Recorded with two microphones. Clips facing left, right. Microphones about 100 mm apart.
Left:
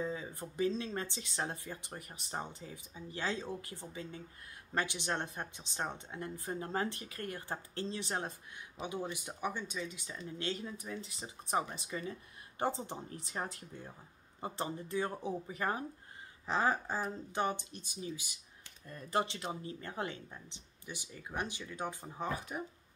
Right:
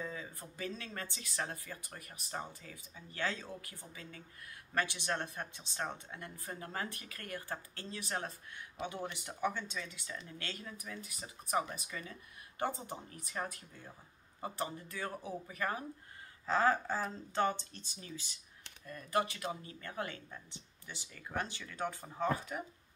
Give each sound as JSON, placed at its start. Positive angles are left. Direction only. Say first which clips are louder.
{"t": 0.0, "sound": "speech", "louder": "left 5 dB", "side_deg": 20}
{"t": 18.9, "sound": "speech", "louder": "even", "side_deg": 25}